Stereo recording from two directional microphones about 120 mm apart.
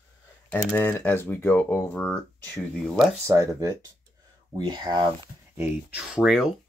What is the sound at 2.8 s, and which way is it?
Speech, centre (ahead or behind).